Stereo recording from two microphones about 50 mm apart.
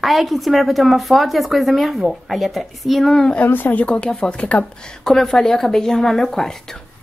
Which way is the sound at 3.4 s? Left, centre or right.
Left.